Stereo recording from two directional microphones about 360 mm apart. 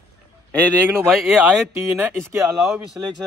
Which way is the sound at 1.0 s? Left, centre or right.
Centre.